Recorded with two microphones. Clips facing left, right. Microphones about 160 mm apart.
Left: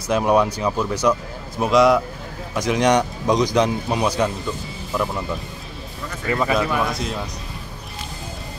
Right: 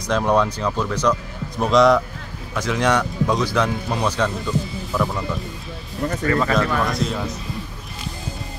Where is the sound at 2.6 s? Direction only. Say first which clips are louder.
Left 2 dB; 15° left (ahead or behind).